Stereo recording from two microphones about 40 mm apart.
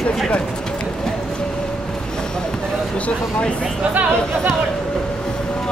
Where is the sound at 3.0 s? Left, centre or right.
Left.